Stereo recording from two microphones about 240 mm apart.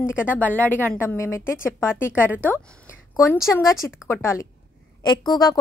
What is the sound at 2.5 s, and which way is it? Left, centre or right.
A woman's voice, centre.